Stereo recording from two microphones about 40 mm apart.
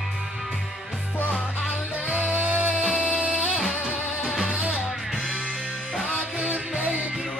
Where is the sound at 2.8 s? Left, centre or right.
Right.